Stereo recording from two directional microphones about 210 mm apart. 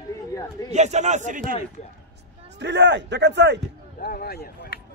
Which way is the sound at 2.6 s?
55° right (ahead or behind).